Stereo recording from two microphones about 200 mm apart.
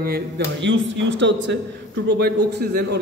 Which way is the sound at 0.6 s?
70° right (ahead or behind).